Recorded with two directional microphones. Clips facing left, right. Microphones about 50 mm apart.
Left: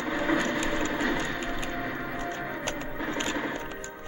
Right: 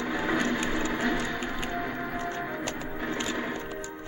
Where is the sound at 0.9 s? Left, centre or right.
Centre.